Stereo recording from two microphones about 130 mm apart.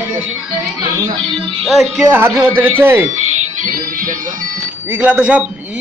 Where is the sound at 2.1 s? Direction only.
15° right (ahead or behind).